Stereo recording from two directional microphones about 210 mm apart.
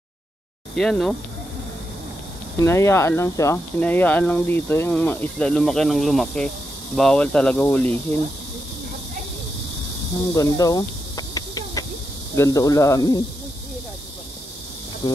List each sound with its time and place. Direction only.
0.7 s speech: 5° left (ahead or behind)
2.6 s speech: 15° left (ahead or behind)
10.3 s snake: 15° left (ahead or behind)
12.4 s speech: 15° left (ahead or behind)
15.0 s insect: 15° left (ahead or behind)